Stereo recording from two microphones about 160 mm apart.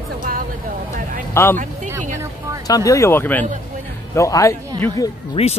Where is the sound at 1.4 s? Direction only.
15° left (ahead or behind).